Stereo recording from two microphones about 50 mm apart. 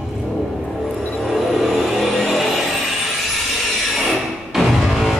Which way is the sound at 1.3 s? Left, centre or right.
Centre.